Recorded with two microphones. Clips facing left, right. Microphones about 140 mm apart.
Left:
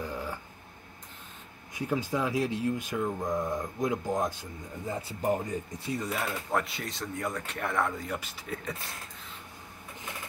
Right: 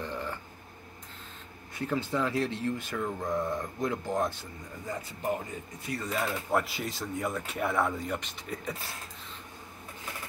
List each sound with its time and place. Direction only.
0.0 s a sound: 10° left (ahead or behind)
1.7 s speech: 10° left (ahead or behind)
4.8 s speech: 30° left (ahead or behind)
5.9 s speech: centre (ahead or behind)